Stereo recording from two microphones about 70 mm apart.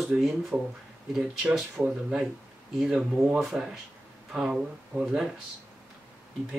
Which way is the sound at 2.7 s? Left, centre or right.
Centre.